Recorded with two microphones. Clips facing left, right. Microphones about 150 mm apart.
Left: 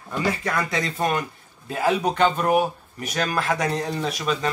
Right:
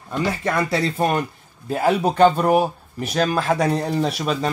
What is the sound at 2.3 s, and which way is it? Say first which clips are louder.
Speech: right 3 dB; 35° right (ahead or behind).